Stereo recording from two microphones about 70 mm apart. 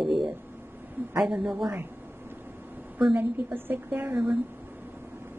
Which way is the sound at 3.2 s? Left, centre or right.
Right.